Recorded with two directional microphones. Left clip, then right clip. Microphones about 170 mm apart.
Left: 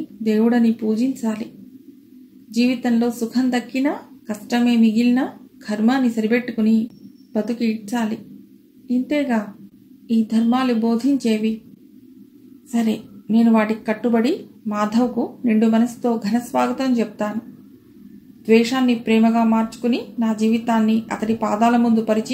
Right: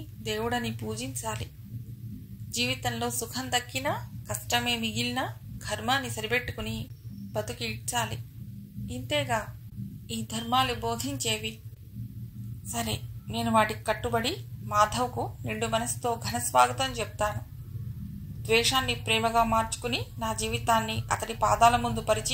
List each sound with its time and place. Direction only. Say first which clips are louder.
0.2 s a woman's voice: left 11 dB; 30° right (ahead or behind)
2.5 s a woman's voice: left 9 dB; 30° right (ahead or behind)
12.7 s a woman's voice: left 10 dB; 30° right (ahead or behind)
18.4 s a woman's voice: left 8 dB; 30° right (ahead or behind)